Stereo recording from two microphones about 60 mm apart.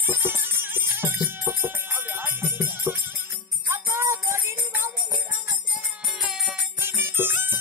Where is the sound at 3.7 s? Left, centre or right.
Right.